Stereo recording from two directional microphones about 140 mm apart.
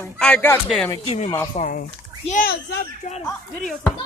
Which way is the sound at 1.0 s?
50° left (ahead or behind).